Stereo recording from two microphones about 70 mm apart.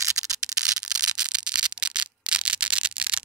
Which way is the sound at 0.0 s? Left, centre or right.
Right.